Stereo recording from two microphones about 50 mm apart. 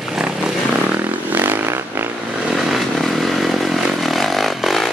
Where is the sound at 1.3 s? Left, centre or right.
Right.